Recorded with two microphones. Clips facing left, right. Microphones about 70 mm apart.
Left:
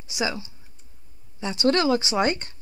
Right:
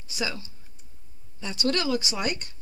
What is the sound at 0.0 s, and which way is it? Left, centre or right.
Speech, centre.